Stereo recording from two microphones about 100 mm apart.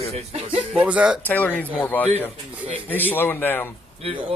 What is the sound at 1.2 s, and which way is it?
A man's voice, 15° left (ahead or behind).